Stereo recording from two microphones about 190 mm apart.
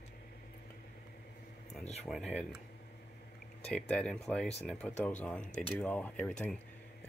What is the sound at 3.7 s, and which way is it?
Speech, 5° left (ahead or behind).